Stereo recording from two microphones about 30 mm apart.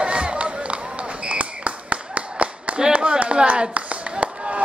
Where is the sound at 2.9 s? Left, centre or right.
Right.